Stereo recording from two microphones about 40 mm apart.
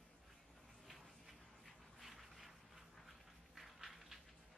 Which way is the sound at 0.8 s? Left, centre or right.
Centre.